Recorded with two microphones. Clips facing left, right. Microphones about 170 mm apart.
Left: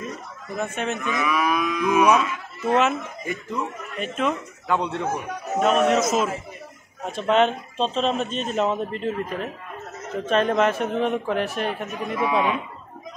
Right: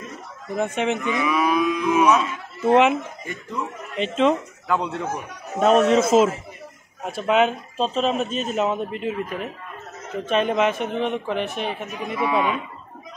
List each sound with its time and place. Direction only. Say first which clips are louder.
0.6 s speech: right 4 dB; 15° right (ahead or behind)
1.1 s cattle: even; 30° right (ahead or behind)
2.1 s a woman's voice: even; 25° right (ahead or behind)
4.6 s a man's voice: even; centre (ahead or behind)
5.7 s a man's voice: right 4 dB; 30° right (ahead or behind)
7.1 s a man's voice: even; 5° right (ahead or behind)